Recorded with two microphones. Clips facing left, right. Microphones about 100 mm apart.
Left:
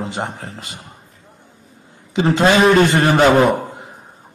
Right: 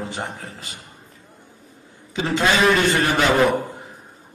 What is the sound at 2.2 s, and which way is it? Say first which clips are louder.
A man's voice: left 5 dB; 30° left (ahead or behind).